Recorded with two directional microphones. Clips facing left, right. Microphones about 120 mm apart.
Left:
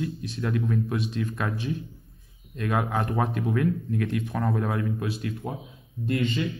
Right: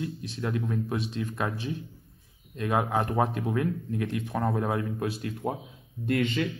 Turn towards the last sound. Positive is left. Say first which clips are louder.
# even
turn(degrees=-65)  # may be behind; listen again after turning